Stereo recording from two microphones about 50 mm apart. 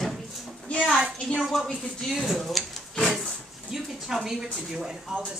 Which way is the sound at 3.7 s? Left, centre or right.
Centre.